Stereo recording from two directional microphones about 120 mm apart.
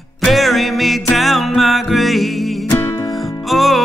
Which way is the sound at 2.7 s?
20° left (ahead or behind).